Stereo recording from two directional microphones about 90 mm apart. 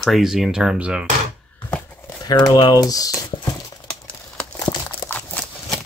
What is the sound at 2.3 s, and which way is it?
Speech, 50° left (ahead or behind).